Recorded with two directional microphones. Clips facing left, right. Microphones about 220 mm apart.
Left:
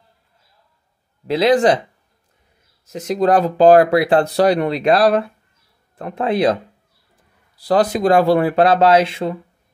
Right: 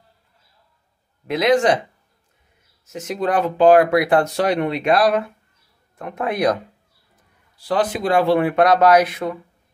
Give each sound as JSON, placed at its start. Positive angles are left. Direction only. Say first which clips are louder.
{"t": 1.2, "sound": "speech", "louder": "left 3 dB", "side_deg": 30}
{"t": 2.9, "sound": "speech", "louder": "left 6 dB", "side_deg": 35}
{"t": 7.5, "sound": "speech", "louder": "left 4 dB", "side_deg": 40}